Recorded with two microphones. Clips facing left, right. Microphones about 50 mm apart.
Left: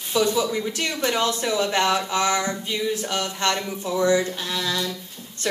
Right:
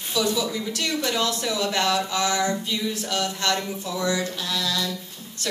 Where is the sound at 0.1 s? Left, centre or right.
Left.